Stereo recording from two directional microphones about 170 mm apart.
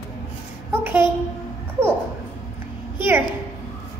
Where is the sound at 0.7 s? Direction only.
10° right (ahead or behind).